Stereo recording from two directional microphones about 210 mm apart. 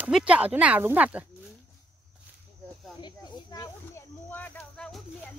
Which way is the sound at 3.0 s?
20° left (ahead or behind).